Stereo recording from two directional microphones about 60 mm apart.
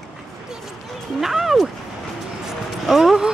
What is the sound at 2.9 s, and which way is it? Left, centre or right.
Speech, centre.